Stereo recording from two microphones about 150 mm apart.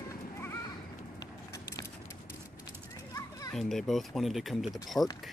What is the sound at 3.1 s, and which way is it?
Children playing, 25° left (ahead or behind).